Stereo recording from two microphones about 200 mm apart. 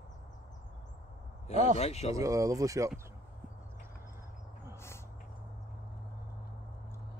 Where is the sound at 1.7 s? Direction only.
30° left (ahead or behind).